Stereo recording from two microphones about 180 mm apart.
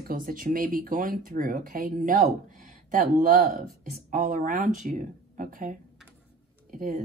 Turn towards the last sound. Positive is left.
turn(degrees=-45)  # may be behind; listen again after turning